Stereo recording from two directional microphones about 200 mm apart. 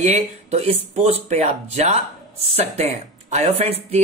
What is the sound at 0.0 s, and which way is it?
Speech, 35° right (ahead or behind).